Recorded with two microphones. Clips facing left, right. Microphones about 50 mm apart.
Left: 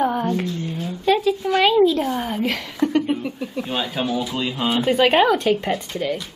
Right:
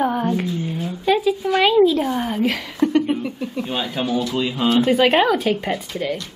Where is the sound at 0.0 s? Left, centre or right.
Centre.